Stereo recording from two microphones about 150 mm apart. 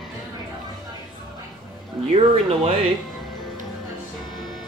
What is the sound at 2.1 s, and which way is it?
Speech, 45° right (ahead or behind).